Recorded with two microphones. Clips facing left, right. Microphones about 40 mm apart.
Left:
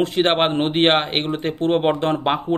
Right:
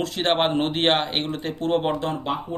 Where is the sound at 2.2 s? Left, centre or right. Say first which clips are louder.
Left 7 dB; left.